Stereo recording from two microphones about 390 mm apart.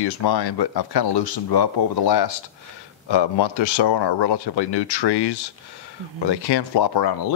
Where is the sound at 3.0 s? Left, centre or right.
Left.